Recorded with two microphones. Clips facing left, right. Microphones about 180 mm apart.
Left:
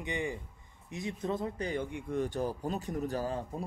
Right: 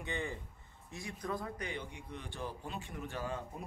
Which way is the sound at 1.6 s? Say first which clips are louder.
Left 8 dB; 50° left (ahead or behind).